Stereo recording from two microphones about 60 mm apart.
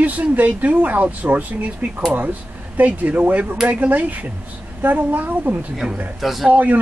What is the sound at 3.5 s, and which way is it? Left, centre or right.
Speech, centre.